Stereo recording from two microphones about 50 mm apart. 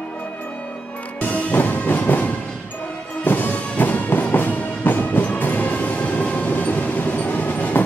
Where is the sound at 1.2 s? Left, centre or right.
Left.